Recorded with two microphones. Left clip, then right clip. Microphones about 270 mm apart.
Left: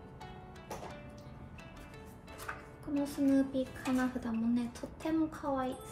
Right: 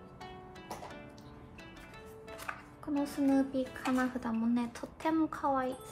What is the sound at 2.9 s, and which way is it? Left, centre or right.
A woman's voice, centre.